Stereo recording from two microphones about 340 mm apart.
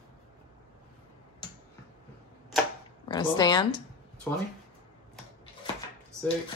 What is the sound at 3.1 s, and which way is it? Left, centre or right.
Speech, centre.